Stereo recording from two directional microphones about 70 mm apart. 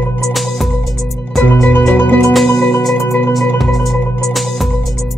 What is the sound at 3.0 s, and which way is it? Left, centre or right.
Music, left.